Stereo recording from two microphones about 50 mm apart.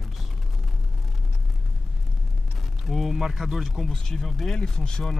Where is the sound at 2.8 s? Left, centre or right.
Centre.